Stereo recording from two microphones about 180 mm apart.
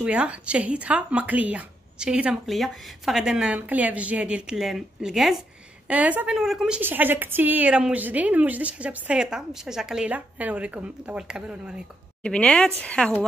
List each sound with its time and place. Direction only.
0.0 s a woman's voice: 5° right (ahead or behind)
12.2 s speech: 5° left (ahead or behind)